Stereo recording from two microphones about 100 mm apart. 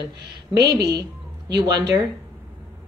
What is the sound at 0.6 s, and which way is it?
A woman's voice, 40° right (ahead or behind).